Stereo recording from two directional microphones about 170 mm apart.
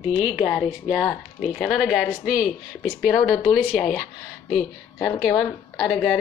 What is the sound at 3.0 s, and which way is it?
A woman's voice, 5° right (ahead or behind).